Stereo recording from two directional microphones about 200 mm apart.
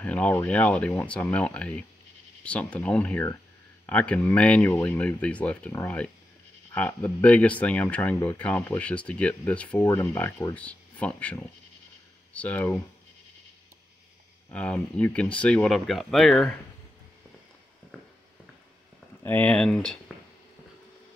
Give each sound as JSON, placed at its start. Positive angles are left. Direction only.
{"t": 0.0, "sound": "speech", "side_deg": 5}
{"t": 14.5, "sound": "speech", "side_deg": 5}
{"t": 19.2, "sound": "speech", "side_deg": 10}